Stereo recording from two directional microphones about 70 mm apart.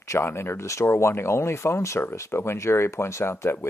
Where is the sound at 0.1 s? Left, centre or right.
Left.